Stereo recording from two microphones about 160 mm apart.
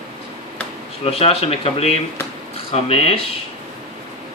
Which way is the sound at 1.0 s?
40° left (ahead or behind).